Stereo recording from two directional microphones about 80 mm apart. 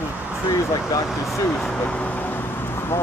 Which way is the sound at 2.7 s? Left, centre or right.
Left.